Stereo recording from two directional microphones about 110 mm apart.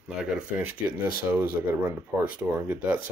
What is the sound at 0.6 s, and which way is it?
Speech, 15° right (ahead or behind).